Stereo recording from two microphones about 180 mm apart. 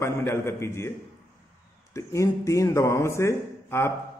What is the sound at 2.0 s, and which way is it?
A man's voice, 15° left (ahead or behind).